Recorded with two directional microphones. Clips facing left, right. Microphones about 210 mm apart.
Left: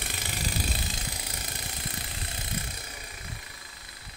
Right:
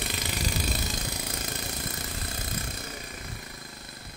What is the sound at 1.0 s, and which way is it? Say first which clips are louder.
Engine: right 5 dB; 45° right (ahead or behind).